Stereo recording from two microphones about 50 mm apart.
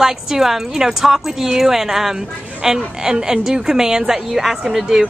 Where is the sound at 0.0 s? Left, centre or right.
Centre.